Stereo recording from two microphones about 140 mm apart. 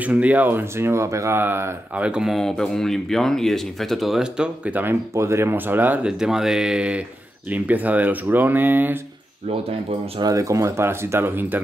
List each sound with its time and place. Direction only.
0.0 s speech: 10° right (ahead or behind)
10.2 s speech: 20° right (ahead or behind)